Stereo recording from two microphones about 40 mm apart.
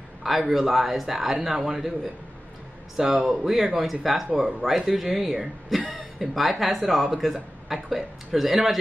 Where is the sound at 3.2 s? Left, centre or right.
Centre.